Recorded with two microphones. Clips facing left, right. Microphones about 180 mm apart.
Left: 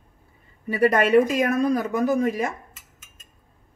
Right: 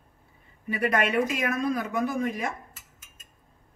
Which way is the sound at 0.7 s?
40° left (ahead or behind).